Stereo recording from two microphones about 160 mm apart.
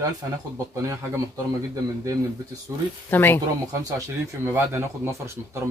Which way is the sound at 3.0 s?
15° left (ahead or behind).